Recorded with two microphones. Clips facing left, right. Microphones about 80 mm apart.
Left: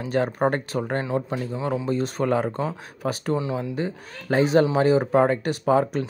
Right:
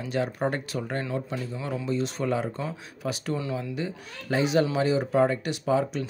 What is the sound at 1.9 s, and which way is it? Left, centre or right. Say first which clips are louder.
Speech: left 2 dB; left.